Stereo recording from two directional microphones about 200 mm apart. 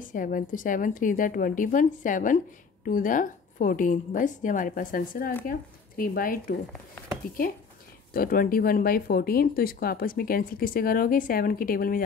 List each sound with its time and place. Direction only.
0.0 s a woman's voice: 45° left (ahead or behind)
8.1 s speech: 45° left (ahead or behind)